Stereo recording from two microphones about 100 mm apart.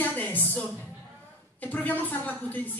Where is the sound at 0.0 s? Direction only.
15° left (ahead or behind).